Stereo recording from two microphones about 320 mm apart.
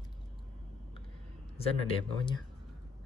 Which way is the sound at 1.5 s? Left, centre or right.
Centre.